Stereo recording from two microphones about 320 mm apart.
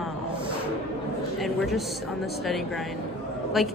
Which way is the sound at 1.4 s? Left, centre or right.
Centre.